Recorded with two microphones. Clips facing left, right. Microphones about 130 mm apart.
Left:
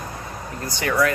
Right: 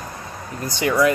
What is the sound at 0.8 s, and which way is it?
Speech, 20° right (ahead or behind).